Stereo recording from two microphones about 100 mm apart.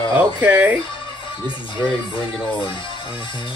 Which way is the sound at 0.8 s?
55° left (ahead or behind).